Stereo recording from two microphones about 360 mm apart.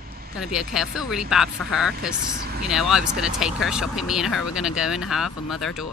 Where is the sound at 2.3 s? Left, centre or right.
Right.